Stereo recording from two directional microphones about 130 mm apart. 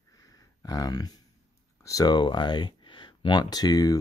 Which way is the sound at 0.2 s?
25° left (ahead or behind).